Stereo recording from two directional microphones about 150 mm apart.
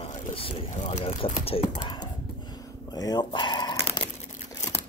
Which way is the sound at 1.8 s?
30° left (ahead or behind).